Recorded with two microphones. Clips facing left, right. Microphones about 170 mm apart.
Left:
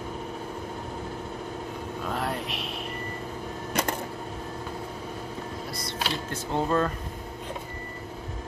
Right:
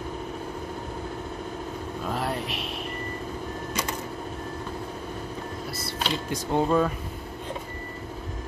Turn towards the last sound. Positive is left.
turn(degrees=-10)  # may be behind; listen again after turning